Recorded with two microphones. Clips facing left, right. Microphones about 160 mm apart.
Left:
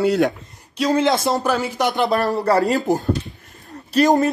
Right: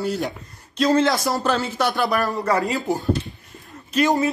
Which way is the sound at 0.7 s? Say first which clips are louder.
Even; 15° left (ahead or behind).